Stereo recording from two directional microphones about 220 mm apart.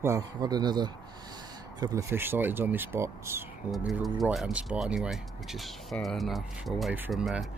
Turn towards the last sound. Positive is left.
turn(degrees=0)  # may be behind; listen again after turning